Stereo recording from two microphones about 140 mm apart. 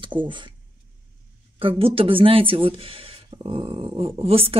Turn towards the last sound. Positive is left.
turn(degrees=-45)  # may be behind; listen again after turning